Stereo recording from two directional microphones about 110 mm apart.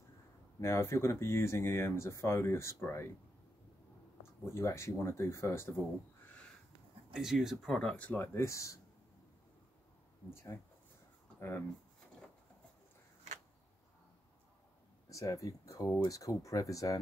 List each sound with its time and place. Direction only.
0.6 s speech: 25° left (ahead or behind)
4.6 s speech: 25° left (ahead or behind)
7.1 s speech: 5° right (ahead or behind); by 8.7 s 30° left (ahead or behind)
10.3 s speech: 20° left (ahead or behind)
15.0 s speech: 30° left (ahead or behind)